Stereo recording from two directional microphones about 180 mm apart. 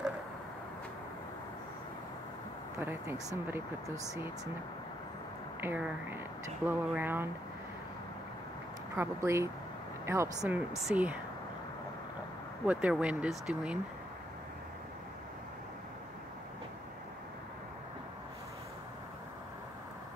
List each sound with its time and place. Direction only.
2.8 s speech: 10° right (ahead or behind)
5.6 s speech: 10° right (ahead or behind)
8.9 s speech: 15° right (ahead or behind)
10.8 s speech: 5° right (ahead or behind)
12.6 s speech: 5° right (ahead or behind)